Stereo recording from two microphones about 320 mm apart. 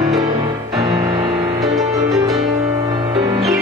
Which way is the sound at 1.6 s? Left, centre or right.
Centre.